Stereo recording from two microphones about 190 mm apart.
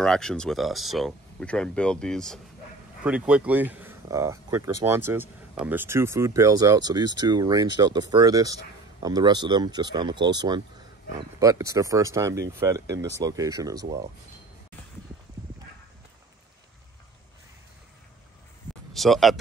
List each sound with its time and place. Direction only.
0.0 s speech: 5° left (ahead or behind)
3.0 s speech: 5° right (ahead or behind)
18.9 s speech: centre (ahead or behind)